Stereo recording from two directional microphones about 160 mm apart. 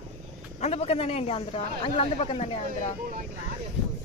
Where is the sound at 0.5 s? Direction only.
40° left (ahead or behind).